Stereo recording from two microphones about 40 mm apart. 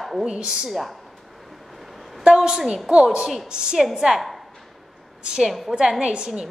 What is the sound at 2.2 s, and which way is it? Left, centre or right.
A woman's voice, centre.